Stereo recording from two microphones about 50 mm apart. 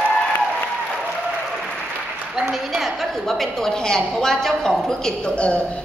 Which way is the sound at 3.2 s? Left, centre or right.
Centre.